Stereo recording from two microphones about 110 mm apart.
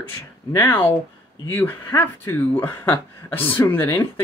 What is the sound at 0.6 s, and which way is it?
Speech, 15° left (ahead or behind).